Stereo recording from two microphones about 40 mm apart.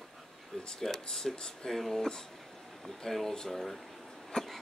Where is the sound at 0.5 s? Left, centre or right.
Left.